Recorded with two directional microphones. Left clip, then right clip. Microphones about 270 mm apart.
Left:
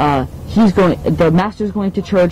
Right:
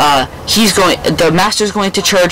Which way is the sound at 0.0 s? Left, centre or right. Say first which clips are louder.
Right 5 dB; centre.